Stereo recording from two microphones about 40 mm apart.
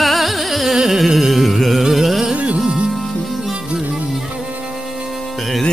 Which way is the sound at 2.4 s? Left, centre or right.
Right.